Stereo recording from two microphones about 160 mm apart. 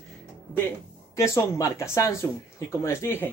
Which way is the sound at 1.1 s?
20° left (ahead or behind).